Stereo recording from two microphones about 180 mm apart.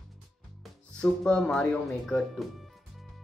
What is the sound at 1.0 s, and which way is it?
Speech, 5° left (ahead or behind).